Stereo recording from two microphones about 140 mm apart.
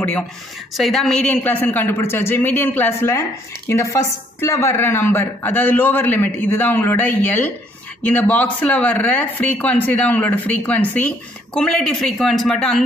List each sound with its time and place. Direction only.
0.7 s a woman's voice: centre (ahead or behind)